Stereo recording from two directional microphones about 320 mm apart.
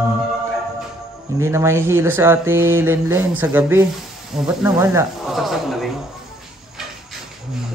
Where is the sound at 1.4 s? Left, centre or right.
Centre.